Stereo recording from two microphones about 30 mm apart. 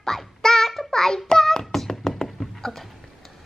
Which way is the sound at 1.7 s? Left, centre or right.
Centre.